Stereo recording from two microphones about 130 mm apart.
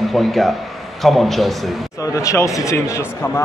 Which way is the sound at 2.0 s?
25° left (ahead or behind).